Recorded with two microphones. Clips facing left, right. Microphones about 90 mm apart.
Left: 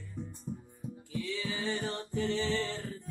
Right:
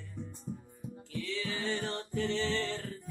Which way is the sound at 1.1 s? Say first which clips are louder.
Left 1 dB; 15° left (ahead or behind).